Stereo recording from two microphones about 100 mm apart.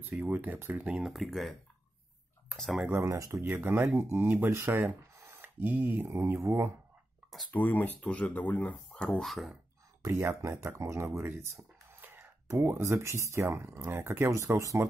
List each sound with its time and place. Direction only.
0.2 s speech: 20° right (ahead or behind); by 1.5 s centre (ahead or behind)
2.5 s speech: centre (ahead or behind)
2.9 s speech: 30° right (ahead or behind)
7.5 s speech: 15° left (ahead or behind); by 9.5 s centre (ahead or behind)
10.0 s speech: 30° right (ahead or behind)